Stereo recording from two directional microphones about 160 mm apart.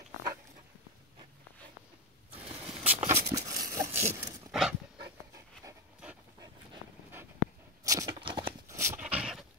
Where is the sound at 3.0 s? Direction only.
20° right (ahead or behind).